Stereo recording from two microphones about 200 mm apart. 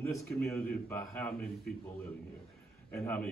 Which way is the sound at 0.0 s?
15° left (ahead or behind).